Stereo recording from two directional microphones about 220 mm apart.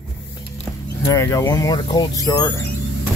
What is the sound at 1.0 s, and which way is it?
Speech, 15° left (ahead or behind).